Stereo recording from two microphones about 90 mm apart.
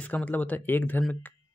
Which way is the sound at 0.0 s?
15° left (ahead or behind).